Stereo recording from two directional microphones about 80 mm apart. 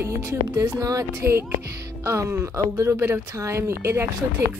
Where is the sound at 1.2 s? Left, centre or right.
Right.